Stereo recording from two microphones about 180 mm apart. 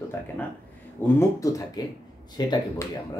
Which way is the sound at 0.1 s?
15° left (ahead or behind).